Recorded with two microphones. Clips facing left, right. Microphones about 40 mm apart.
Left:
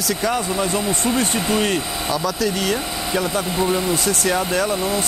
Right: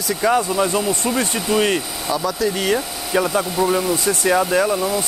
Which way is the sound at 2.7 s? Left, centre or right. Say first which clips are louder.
Right 2 dB; centre.